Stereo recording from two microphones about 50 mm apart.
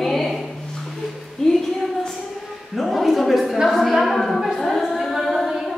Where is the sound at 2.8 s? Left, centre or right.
Centre.